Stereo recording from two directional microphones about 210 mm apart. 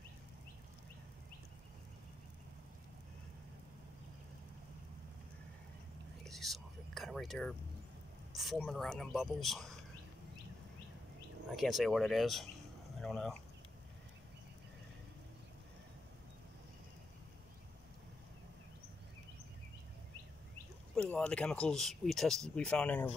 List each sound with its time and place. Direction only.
6.2 s whispering: centre (ahead or behind)
8.4 s speech: centre (ahead or behind)
11.5 s speech: centre (ahead or behind)
20.9 s speech: 5° left (ahead or behind)